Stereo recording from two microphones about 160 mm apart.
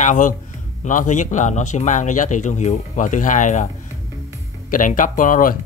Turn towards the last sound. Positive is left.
turn(degrees=60)  # may be behind; listen again after turning